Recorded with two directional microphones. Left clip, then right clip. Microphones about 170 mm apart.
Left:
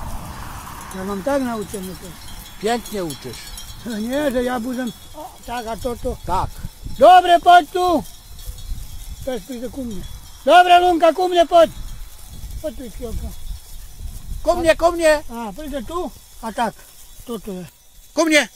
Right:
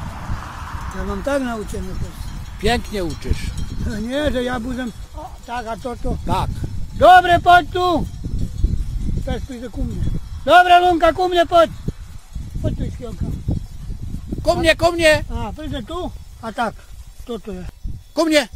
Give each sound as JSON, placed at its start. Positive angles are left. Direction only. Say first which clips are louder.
{"t": 0.2, "sound": "a sound", "louder": "right 2 dB", "side_deg": 65}
{"t": 1.2, "sound": "speech", "louder": "even", "side_deg": 35}
{"t": 1.6, "sound": "speech", "louder": "left 1 dB", "side_deg": 55}
{"t": 2.6, "sound": "speech", "louder": "right 1 dB", "side_deg": -15}
{"t": 3.4, "sound": "speech", "louder": "right 1 dB", "side_deg": 45}
{"t": 5.5, "sound": "a man's voice", "louder": "left 1 dB", "side_deg": 70}
{"t": 6.2, "sound": "speech", "louder": "even", "side_deg": -15}
{"t": 7.0, "sound": "speech", "louder": "even", "side_deg": 70}
{"t": 9.2, "sound": "a man's voice", "louder": "left 3 dB", "side_deg": 65}
{"t": 14.4, "sound": "speech", "louder": "even", "side_deg": -20}
{"t": 16.0, "sound": "speech", "louder": "left 1 dB", "side_deg": 60}
{"t": 18.1, "sound": "speech", "louder": "left 1 dB", "side_deg": 0}